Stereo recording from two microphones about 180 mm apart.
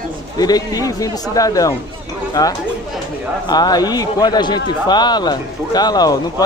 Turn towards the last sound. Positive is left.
turn(degrees=20)  # may be behind; listen again after turning